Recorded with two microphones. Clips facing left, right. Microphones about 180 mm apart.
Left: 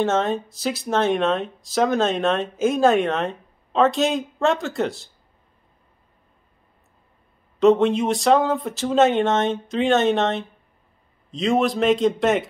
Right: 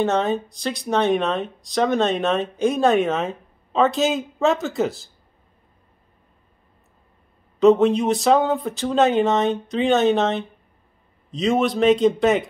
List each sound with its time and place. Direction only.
0.0 s speech: centre (ahead or behind)
7.6 s speech: centre (ahead or behind)